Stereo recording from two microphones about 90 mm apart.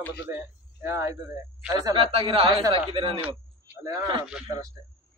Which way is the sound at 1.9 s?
85° right.